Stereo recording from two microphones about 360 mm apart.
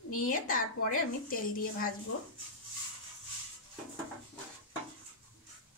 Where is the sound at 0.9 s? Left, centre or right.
Left.